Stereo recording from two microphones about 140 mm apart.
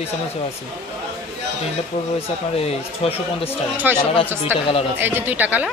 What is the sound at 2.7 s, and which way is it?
Speech, 45° left (ahead or behind).